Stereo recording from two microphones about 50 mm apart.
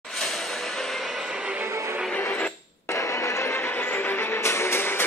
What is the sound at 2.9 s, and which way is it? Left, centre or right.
Music, left.